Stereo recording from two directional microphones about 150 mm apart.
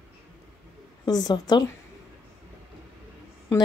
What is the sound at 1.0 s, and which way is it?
Speech, 25° left (ahead or behind).